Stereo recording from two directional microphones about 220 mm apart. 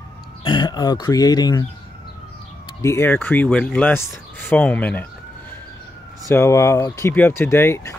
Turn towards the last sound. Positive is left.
turn(degrees=10)  # may be behind; listen again after turning